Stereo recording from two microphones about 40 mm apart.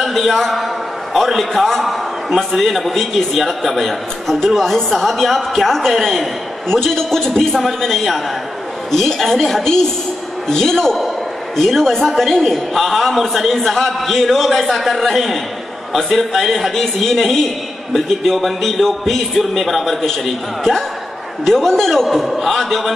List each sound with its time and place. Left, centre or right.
0.0 s a man's voice: centre
21.5 s a man's voice: centre